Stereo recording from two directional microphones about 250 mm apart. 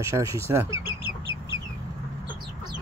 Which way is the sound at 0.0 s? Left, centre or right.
Centre.